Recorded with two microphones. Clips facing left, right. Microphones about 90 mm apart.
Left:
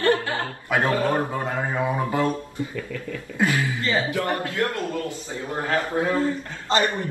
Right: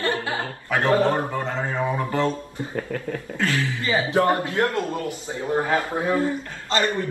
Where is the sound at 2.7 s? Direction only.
50° right (ahead or behind).